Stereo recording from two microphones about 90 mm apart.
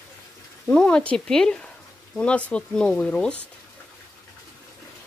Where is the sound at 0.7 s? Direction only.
10° left (ahead or behind).